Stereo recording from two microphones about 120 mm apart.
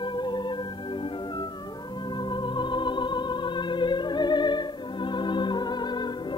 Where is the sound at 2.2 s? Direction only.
40° left (ahead or behind).